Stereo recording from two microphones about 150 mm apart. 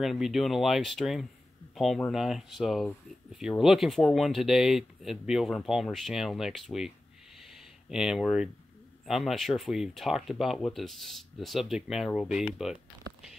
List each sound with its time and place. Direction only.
0.0 s speech: centre (ahead or behind)
7.3 s a sound: centre (ahead or behind)
9.0 s speech: centre (ahead or behind)